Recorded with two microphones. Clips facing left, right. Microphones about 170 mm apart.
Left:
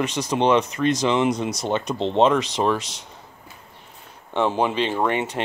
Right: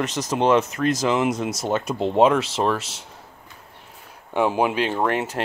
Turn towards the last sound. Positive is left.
turn(degrees=0)  # may be behind; listen again after turning